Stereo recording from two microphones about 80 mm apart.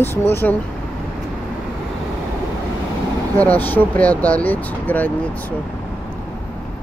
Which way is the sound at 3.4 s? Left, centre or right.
Left.